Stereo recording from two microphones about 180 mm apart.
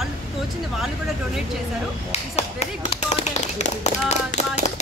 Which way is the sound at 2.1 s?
35° left (ahead or behind).